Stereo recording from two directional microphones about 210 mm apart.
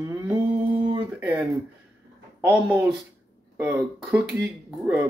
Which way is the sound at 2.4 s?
10° right (ahead or behind).